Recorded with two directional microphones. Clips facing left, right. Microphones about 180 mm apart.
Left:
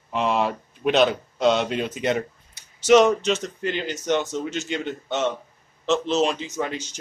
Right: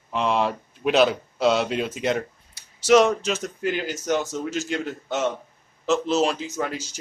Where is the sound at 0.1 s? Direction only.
Centre (ahead or behind).